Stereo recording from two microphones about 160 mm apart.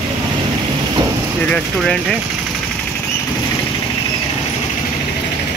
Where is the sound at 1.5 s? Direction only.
5° left (ahead or behind).